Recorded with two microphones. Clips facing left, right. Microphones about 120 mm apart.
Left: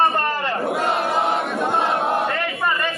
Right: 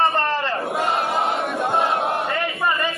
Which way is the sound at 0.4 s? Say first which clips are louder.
Left 1 dB; centre (ahead or behind).